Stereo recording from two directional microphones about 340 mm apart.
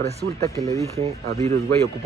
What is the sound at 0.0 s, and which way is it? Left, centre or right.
Speech, centre.